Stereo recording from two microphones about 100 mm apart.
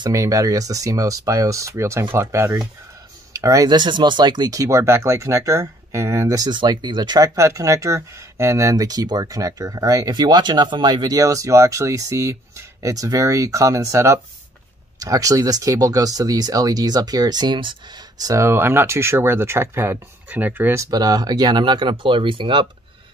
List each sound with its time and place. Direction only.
0.1 s speech: 30° right (ahead or behind)
3.6 s speech: 50° right (ahead or behind)
7.3 s speech: 30° right (ahead or behind)
18.4 s speech: 25° right (ahead or behind)
20.7 s speech: 35° right (ahead or behind); by 22.7 s 55° right (ahead or behind)